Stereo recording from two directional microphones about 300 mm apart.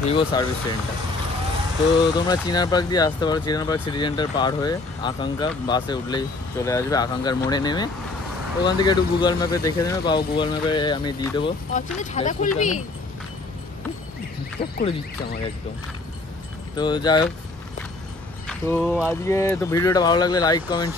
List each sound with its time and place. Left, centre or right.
0.0 s speech: centre
2.1 s speech: centre
14.6 s speech: centre
16.7 s speech: centre
18.5 s speech: centre